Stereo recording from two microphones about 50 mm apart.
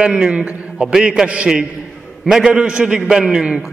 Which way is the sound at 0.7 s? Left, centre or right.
Centre.